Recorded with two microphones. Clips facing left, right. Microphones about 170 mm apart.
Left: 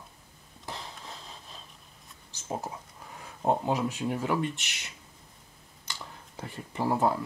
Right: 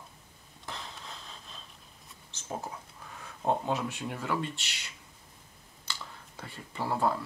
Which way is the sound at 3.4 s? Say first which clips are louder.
Left 3 dB; 15° left (ahead or behind).